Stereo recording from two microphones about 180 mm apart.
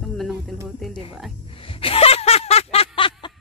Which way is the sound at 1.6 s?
30° left (ahead or behind).